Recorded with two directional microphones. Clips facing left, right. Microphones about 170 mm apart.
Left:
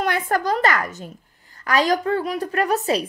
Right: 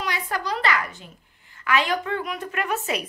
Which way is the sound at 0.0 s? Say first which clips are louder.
Left 7 dB; 50° left (ahead or behind).